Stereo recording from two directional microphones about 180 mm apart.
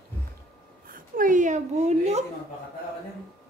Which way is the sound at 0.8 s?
50° right (ahead or behind).